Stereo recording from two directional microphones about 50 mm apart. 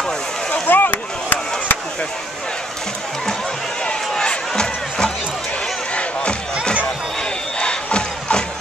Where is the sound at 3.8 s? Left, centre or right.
Centre.